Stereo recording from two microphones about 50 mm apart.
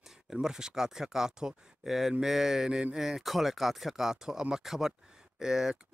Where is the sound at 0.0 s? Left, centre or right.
Centre.